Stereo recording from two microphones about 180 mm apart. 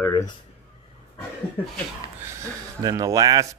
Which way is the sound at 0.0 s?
20° left (ahead or behind).